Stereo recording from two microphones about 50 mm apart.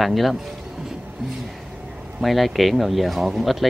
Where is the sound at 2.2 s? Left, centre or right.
Centre.